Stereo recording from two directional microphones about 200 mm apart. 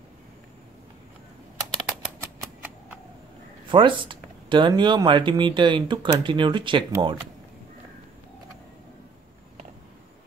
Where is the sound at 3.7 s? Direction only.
25° right (ahead or behind).